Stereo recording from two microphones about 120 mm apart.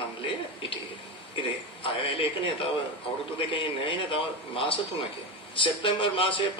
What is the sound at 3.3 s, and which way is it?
A man's voice, 45° left (ahead or behind).